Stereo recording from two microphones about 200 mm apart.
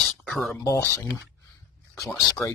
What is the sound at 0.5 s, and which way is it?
Speech, 15° left (ahead or behind).